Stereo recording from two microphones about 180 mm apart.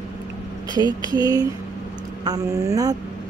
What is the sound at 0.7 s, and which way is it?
Speech, 20° right (ahead or behind).